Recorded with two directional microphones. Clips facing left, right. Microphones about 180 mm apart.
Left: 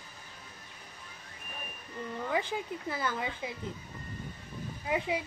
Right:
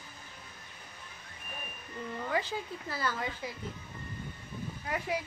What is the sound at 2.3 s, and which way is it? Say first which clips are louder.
Speech: left 1 dB; 20° left (ahead or behind).